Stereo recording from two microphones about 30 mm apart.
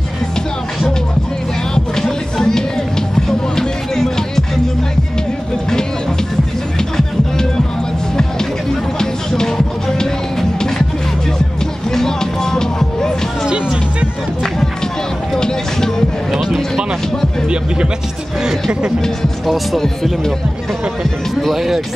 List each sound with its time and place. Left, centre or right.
2.0 s music: centre
8.9 s music: left
11.9 s music: centre
15.3 s a sound: left
16.3 s a sound: centre
18.4 s a sound: right
19.4 s music: centre
19.8 s music: centre
21.5 s music: centre